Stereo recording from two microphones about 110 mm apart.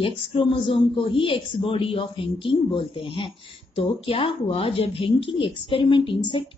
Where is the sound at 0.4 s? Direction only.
50° left (ahead or behind).